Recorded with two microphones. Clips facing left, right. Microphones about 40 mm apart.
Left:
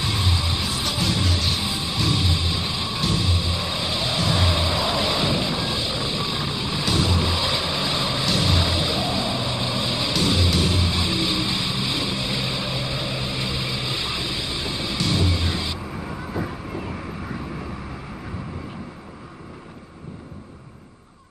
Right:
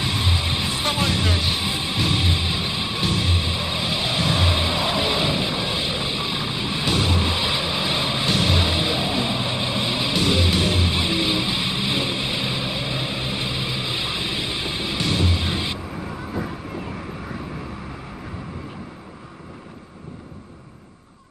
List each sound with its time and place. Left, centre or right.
0.0 s vehicle: right
15.9 s vehicle: centre